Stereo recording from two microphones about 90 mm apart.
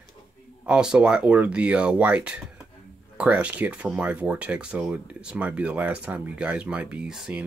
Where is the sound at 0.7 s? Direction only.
10° right (ahead or behind).